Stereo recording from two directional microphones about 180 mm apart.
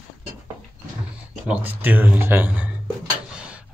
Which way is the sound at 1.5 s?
10° right (ahead or behind).